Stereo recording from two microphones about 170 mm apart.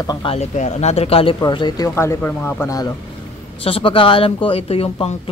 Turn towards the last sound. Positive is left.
turn(degrees=35)  # may be behind; listen again after turning